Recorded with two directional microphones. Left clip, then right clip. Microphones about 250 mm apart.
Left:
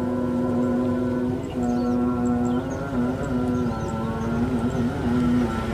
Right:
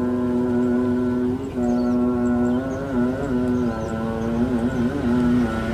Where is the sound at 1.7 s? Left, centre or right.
Centre.